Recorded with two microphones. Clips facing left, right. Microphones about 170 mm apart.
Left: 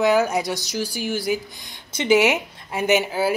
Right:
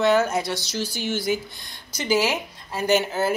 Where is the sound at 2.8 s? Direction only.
10° left (ahead or behind).